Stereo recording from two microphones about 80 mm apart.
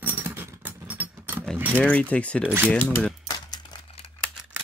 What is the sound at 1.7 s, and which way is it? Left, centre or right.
Speech, centre.